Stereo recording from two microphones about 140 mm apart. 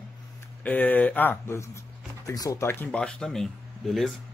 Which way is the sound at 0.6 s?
10° left (ahead or behind).